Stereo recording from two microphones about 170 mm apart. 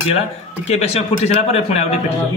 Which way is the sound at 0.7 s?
40° left (ahead or behind).